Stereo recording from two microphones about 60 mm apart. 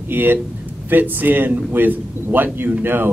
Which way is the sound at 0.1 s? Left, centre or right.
Right.